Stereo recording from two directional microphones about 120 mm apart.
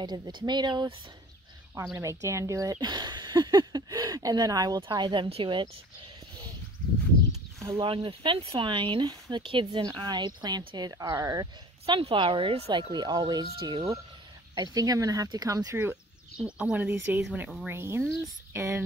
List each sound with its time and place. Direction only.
0.0 s speech: 35° right (ahead or behind)
1.9 s speech: 25° right (ahead or behind)
4.8 s a woman's voice: 40° right (ahead or behind)
7.8 s speech: 45° right (ahead or behind); by 11.9 s 30° right (ahead or behind)
11.9 s speech: 45° right (ahead or behind); by 15.8 s 30° right (ahead or behind)
15.8 s speech: 10° right (ahead or behind)